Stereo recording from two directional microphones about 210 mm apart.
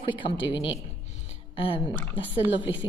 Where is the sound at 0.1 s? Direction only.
25° left (ahead or behind).